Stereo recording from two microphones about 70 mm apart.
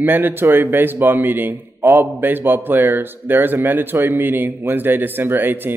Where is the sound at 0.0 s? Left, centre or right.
Right.